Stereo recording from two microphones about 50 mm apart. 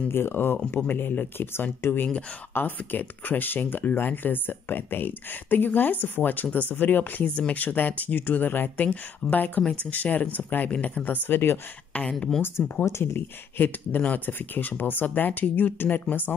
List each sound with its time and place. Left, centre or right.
0.1 s speech: left
7.2 s speech: left
11.1 s speech: left
11.9 s speech: left
13.0 s speech: left